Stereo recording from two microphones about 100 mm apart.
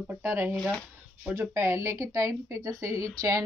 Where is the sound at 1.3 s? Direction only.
25° right (ahead or behind).